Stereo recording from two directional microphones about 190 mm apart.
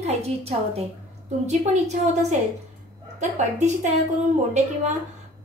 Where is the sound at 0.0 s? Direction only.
35° right (ahead or behind).